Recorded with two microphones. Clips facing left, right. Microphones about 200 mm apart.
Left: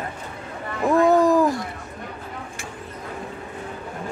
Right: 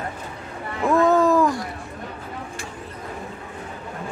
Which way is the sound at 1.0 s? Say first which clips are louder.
Left 1 dB; 15° left (ahead or behind).